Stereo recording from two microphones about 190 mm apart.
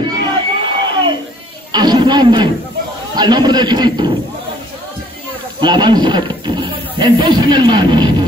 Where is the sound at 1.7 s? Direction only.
20° right (ahead or behind).